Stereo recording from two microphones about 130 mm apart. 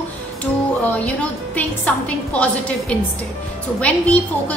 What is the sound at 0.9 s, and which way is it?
A woman's voice, 10° left (ahead or behind).